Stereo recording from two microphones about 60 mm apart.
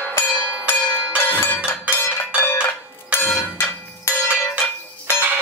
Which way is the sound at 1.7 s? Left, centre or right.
Left.